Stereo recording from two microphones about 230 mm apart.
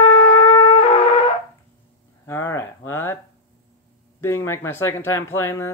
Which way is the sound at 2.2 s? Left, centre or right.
Centre.